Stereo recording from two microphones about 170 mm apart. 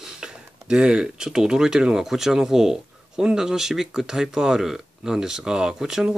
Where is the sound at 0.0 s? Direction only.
5° right (ahead or behind).